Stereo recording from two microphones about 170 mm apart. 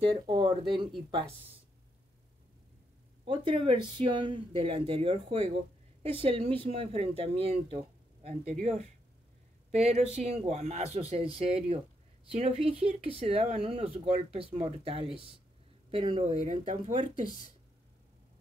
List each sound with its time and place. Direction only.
0.0 s speech: 30° right (ahead or behind)
3.3 s speech: 30° right (ahead or behind)
16.6 s speech: 45° right (ahead or behind)